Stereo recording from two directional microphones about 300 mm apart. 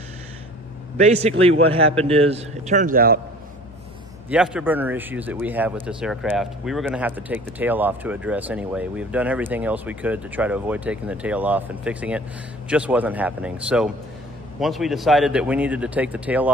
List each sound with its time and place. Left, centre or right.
0.9 s a man's voice: right
4.3 s a man's voice: centre